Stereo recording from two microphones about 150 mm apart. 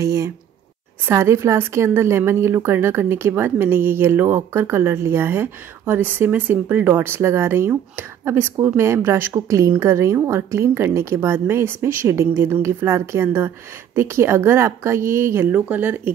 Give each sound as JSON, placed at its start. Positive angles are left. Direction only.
{"t": 0.0, "sound": "a woman's voice", "side_deg": -20}